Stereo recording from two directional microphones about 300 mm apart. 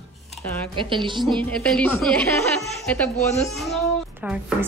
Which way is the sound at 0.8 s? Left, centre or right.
Centre.